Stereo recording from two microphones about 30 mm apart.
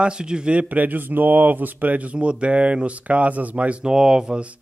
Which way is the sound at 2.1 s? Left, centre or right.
Right.